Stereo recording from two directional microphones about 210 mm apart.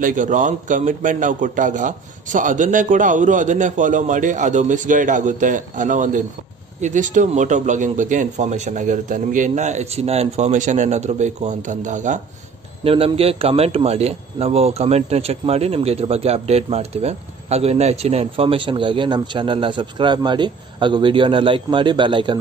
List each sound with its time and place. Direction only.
0.0 s a man's voice: 40° right (ahead or behind); by 22.4 s 20° right (ahead or behind)